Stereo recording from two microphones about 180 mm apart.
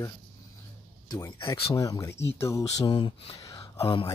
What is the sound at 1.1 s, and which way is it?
Speech, 20° left (ahead or behind).